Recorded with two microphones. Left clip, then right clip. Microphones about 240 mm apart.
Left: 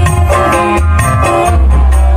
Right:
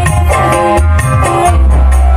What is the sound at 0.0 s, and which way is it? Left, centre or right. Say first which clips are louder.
Music: even; right.